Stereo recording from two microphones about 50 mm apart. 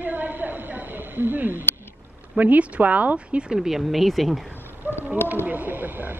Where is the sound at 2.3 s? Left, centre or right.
Right.